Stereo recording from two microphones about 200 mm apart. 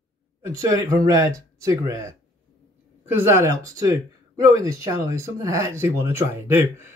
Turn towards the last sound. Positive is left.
turn(degrees=-10)  # may be behind; listen again after turning